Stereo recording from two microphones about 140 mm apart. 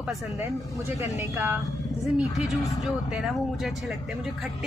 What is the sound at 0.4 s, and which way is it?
Speech, 20° right (ahead or behind).